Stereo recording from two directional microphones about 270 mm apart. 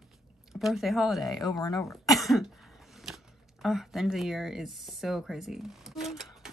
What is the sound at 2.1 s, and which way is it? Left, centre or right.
Cough, centre.